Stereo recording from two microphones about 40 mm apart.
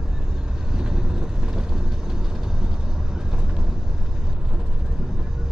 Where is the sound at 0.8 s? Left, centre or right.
Centre.